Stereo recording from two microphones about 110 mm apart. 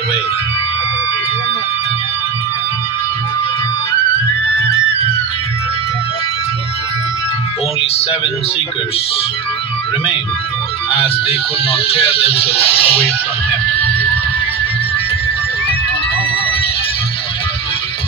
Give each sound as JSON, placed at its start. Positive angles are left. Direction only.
{"t": 11.0, "sound": "speech", "side_deg": 60}